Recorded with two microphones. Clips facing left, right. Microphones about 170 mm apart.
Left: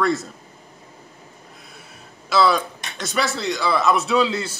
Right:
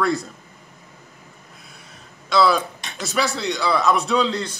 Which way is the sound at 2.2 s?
Centre (ahead or behind).